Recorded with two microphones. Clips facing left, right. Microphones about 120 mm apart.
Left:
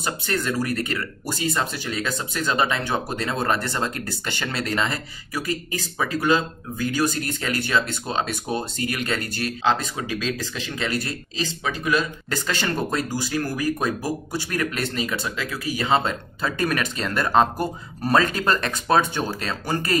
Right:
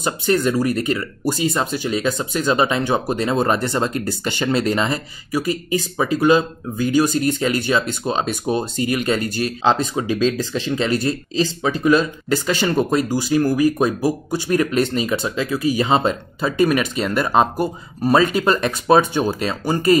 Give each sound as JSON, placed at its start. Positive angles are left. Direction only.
{"t": 0.0, "sound": "speech", "side_deg": -20}
{"t": 9.6, "sound": "speech", "side_deg": -30}
{"t": 12.3, "sound": "speech", "side_deg": -15}